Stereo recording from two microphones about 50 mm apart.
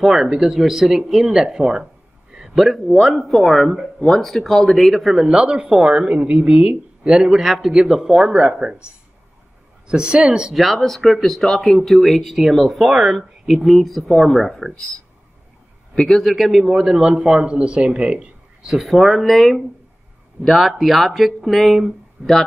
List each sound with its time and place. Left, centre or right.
0.0 s a man's voice: centre
2.3 s a sound: centre
2.9 s speech: centre
5.1 s a woman's voice: centre
9.8 s a woman's voice: centre
10.5 s speech: centre
15.9 s a man's voice: centre
18.6 s speech: centre
22.2 s a man's voice: centre